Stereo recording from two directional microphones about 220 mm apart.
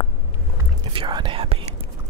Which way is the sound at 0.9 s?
20° right (ahead or behind).